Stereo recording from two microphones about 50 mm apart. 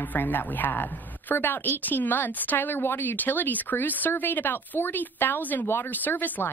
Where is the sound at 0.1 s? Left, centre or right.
Left.